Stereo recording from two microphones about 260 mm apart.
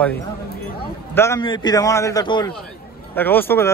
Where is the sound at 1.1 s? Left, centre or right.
Centre.